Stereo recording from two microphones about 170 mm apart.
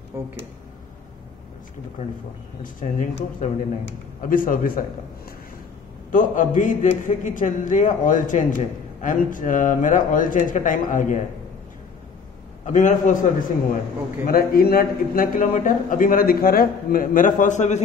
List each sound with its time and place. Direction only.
0.1 s speech: 15° right (ahead or behind)
2.6 s a man's voice: 50° left (ahead or behind)
6.1 s a man's voice: 50° left (ahead or behind)
12.6 s a man's voice: 45° left (ahead or behind)
14.2 s a man's voice: 60° left (ahead or behind); by 17.8 s 45° left (ahead or behind)